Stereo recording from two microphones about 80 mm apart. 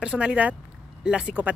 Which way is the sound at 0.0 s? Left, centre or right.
Centre.